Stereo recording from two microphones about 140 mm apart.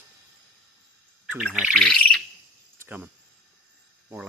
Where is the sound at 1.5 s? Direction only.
10° right (ahead or behind).